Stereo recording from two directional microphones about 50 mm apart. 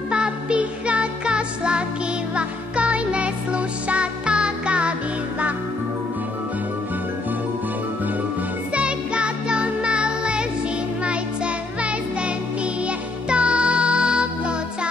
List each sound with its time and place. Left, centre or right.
0.1 s music: centre
8.7 s music: right